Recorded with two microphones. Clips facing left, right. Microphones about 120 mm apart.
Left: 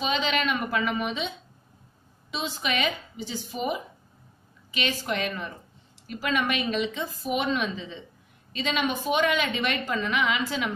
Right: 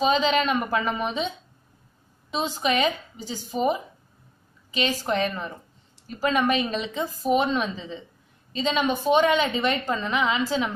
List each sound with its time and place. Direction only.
0.0 s a woman's voice: 35° right (ahead or behind)
2.3 s a woman's voice: 40° right (ahead or behind)